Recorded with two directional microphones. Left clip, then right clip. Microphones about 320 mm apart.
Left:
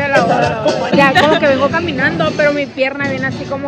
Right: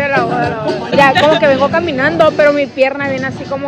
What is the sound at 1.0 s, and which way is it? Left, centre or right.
A woman's voice, centre.